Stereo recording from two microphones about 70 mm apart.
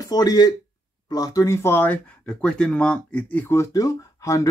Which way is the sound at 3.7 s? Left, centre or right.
Left.